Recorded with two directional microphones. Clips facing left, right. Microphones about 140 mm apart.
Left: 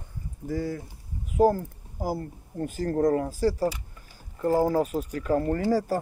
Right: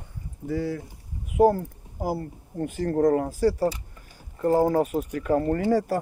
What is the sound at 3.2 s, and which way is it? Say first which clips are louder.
Speech: right 2 dB; 60° right (ahead or behind).